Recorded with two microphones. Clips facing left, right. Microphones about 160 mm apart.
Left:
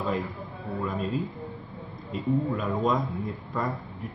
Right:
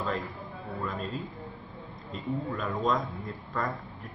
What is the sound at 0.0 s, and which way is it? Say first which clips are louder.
A man's voice: left 3 dB; centre (ahead or behind).